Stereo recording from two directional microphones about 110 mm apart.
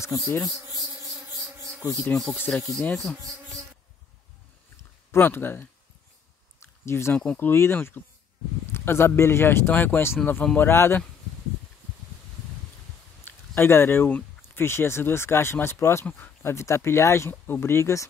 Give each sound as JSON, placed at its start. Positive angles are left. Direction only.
{"t": 0.0, "sound": "speech", "side_deg": 25}
{"t": 1.0, "sound": "insect", "side_deg": -30}
{"t": 2.5, "sound": "insect", "side_deg": 15}
{"t": 5.1, "sound": "speech", "side_deg": 20}
{"t": 6.6, "sound": "a sound", "side_deg": 25}
{"t": 7.3, "sound": "speech", "side_deg": 20}
{"t": 10.4, "sound": "insect", "side_deg": 10}
{"t": 10.7, "sound": "speech", "side_deg": 20}
{"t": 13.2, "sound": "speech", "side_deg": 20}